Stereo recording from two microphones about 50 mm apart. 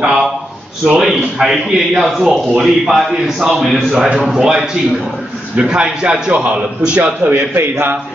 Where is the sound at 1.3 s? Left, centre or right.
Centre.